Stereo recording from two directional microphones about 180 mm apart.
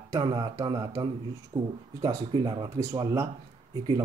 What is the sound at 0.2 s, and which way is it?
Speech, 20° right (ahead or behind).